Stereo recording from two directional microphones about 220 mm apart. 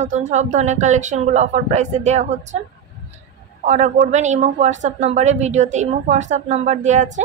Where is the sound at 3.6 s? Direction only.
30° right (ahead or behind).